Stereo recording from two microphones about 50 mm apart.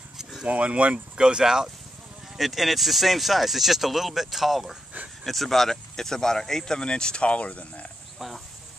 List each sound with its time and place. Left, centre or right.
0.5 s speech: right
1.1 s speech: centre
2.3 s speech: centre; by 7.9 s left
8.2 s speech: centre